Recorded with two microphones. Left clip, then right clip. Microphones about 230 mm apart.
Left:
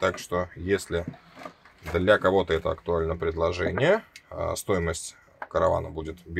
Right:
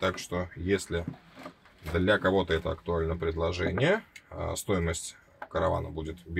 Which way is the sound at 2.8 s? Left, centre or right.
Left.